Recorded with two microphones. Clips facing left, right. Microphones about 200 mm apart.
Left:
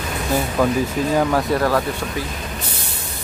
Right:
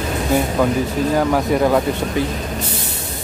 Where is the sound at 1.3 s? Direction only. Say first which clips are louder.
Right 3 dB; 15° right (ahead or behind).